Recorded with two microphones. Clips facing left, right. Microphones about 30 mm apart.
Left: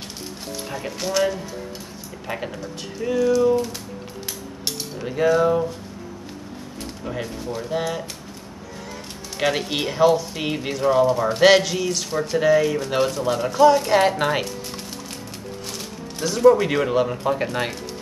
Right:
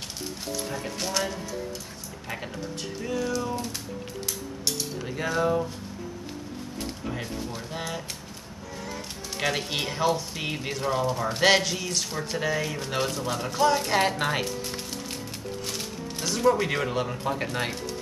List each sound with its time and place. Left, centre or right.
0.5 s speech: centre
0.7 s speech: centre
3.0 s speech: centre
4.6 s speech: centre
6.8 s a sound: centre
7.5 s speech: centre
9.4 s speech: centre
16.2 s speech: centre